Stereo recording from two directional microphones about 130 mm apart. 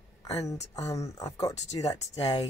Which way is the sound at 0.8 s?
25° left (ahead or behind).